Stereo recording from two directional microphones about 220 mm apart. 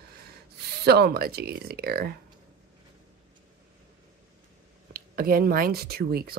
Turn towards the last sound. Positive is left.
turn(degrees=-45)  # may be behind; listen again after turning